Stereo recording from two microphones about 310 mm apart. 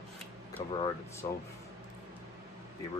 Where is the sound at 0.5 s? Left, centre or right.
Centre.